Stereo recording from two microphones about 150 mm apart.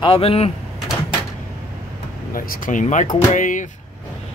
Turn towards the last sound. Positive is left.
turn(degrees=60)  # may be behind; listen again after turning